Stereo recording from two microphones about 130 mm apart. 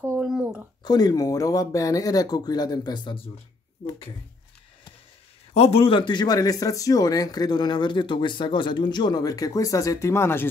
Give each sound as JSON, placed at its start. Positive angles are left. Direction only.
{"t": 0.0, "sound": "a sound", "side_deg": -10}
{"t": 0.8, "sound": "speech", "side_deg": 30}
{"t": 5.5, "sound": "speech", "side_deg": 50}